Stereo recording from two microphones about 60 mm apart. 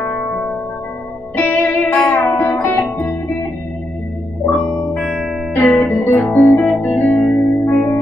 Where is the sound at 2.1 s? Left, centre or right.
Left.